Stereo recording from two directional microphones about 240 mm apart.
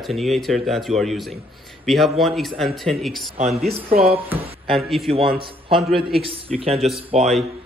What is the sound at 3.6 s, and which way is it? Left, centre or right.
Speech, right.